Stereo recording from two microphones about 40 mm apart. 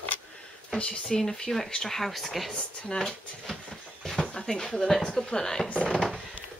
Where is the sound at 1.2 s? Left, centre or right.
Centre.